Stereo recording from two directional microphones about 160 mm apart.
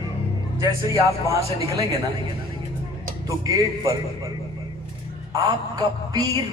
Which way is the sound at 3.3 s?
20° right (ahead or behind).